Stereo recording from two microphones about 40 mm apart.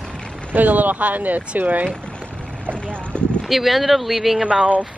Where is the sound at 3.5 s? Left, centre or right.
Centre.